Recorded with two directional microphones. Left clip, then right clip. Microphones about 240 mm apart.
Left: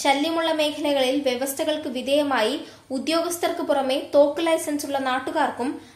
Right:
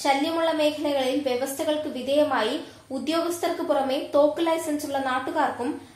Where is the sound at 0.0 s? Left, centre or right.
Left.